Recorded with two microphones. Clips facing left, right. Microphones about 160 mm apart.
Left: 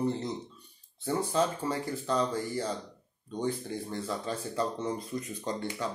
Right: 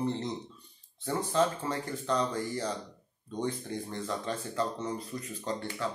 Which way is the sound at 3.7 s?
10° left (ahead or behind).